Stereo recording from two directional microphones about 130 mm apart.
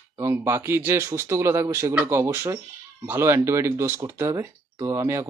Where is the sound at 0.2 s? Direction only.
20° right (ahead or behind).